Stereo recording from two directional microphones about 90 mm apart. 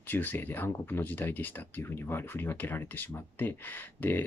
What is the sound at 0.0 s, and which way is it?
Speech, 20° left (ahead or behind).